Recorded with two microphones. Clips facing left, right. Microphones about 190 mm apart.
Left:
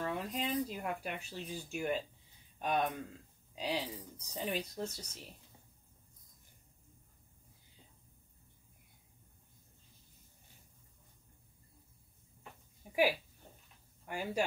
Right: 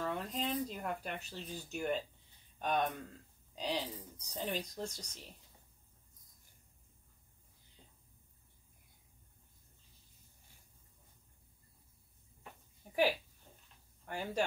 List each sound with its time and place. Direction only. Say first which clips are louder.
0.0 s speech: left 1 dB; 5° left (ahead or behind)
12.8 s a sound: left 1 dB; 5° left (ahead or behind)
14.0 s speech: left 1 dB; 10° left (ahead or behind)